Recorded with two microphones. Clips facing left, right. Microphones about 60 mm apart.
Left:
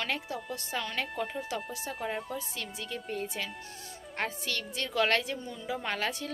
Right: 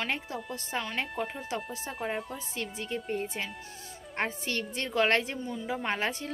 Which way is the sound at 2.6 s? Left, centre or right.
Right.